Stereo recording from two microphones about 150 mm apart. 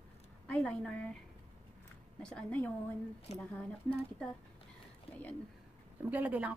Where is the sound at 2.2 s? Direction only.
10° left (ahead or behind).